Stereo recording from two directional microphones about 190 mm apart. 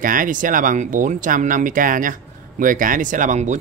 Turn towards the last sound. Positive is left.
turn(degrees=-40)  # may be behind; listen again after turning